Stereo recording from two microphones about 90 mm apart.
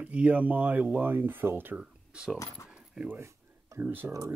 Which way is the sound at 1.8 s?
10° right (ahead or behind).